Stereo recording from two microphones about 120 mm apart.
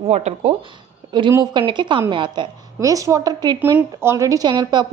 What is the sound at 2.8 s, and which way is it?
Speech, 30° right (ahead or behind).